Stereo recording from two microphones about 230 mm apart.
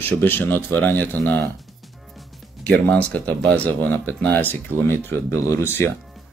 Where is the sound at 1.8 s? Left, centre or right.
Centre.